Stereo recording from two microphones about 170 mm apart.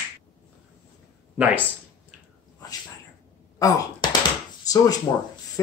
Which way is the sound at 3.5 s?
20° left (ahead or behind).